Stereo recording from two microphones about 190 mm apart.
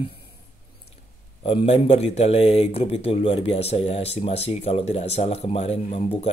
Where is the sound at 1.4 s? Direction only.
30° left (ahead or behind).